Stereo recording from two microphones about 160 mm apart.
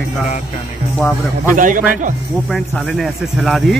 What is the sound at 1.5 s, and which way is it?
Speech, 55° right (ahead or behind).